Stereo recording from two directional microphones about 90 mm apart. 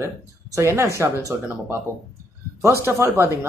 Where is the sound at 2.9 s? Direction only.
30° right (ahead or behind).